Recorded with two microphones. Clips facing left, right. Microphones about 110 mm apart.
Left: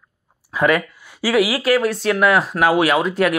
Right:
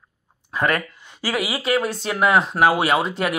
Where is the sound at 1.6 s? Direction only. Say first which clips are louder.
Left 4 dB; 25° right (ahead or behind).